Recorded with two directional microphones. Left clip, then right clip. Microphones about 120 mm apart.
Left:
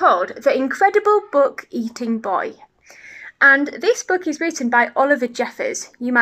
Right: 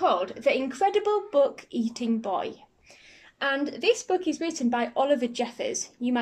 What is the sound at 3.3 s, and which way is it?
Speech, 5° right (ahead or behind).